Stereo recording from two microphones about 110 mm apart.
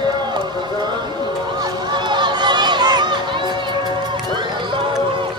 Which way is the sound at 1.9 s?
45° right (ahead or behind).